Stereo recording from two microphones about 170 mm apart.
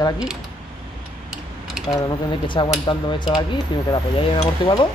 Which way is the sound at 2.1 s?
30° left (ahead or behind).